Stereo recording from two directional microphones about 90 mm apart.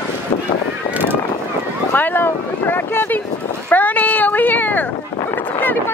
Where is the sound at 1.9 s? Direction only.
20° left (ahead or behind).